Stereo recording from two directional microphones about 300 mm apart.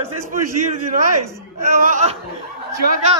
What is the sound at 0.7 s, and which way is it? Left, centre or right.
Speech, right.